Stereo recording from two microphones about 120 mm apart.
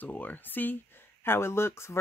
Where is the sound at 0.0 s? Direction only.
15° left (ahead or behind).